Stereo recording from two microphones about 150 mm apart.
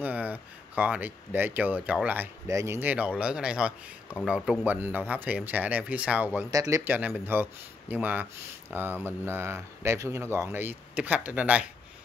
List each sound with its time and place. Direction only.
0.0 s speech: 10° right (ahead or behind)
6.5 s speech: 20° right (ahead or behind)